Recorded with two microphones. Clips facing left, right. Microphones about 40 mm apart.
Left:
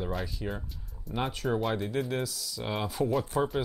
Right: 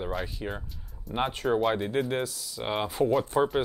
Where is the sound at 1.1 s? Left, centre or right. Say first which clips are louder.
Right 4 dB; right.